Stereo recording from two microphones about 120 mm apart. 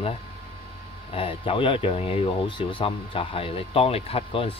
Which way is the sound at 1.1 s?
50° left (ahead or behind).